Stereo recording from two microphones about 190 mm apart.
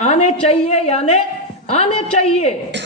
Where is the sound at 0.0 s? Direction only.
35° left (ahead or behind).